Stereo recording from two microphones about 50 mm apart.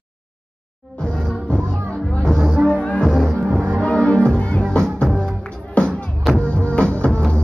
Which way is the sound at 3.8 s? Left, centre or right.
Left.